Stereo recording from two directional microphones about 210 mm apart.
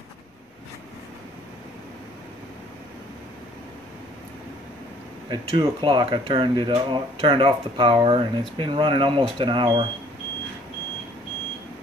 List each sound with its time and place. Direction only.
5.3 s speech: 25° right (ahead or behind)